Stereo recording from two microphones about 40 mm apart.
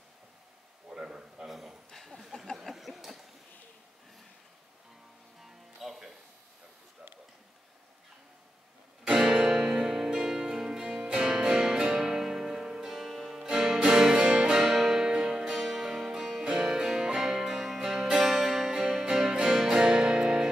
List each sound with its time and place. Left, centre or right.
0.8 s a sound: centre
1.9 s a sound: centre
5.4 s music: centre
9.1 s music: centre
14.2 s music: right
14.5 s music: centre